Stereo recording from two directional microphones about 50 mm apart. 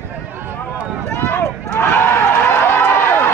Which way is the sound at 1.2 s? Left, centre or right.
Left.